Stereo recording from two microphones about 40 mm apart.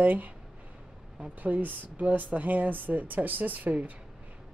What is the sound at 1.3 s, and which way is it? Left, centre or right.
Speech, right.